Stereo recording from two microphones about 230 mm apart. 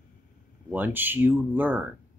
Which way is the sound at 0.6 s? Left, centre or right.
Centre.